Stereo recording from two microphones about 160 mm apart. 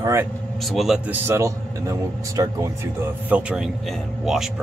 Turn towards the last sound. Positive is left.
turn(degrees=0)  # may be behind; listen again after turning